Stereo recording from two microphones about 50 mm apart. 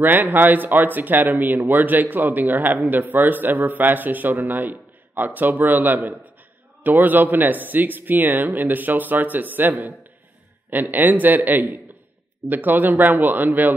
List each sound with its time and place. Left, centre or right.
0.0 s speech: right